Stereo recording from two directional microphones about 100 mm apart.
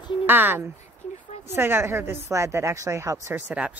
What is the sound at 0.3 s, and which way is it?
A woman's voice, 20° right (ahead or behind).